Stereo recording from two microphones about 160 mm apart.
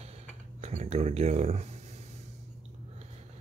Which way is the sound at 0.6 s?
45° right (ahead or behind).